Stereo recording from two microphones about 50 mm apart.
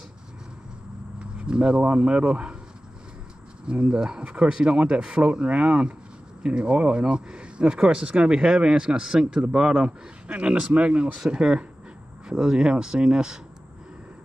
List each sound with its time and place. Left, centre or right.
1.2 s speech: centre
3.6 s speech: right